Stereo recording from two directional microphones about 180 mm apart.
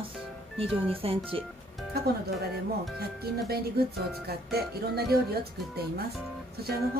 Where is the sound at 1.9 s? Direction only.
60° right (ahead or behind).